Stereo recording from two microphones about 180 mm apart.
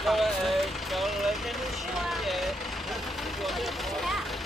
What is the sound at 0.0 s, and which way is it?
Vehicle, centre (ahead or behind).